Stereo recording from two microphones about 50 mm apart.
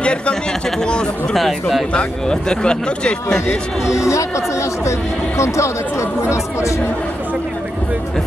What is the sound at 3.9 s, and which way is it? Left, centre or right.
Speech, left.